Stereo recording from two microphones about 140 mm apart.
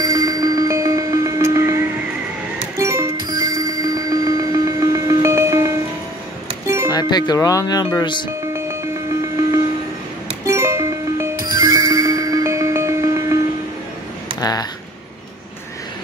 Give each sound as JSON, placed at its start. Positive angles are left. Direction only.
{"t": 0.0, "sound": "music", "side_deg": -25}
{"t": 2.8, "sound": "music", "side_deg": -20}
{"t": 6.9, "sound": "speech", "side_deg": 30}
{"t": 10.4, "sound": "music", "side_deg": -20}
{"t": 14.4, "sound": "a sound", "side_deg": 30}